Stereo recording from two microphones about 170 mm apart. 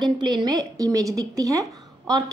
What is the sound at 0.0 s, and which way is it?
A woman's voice, 25° right (ahead or behind).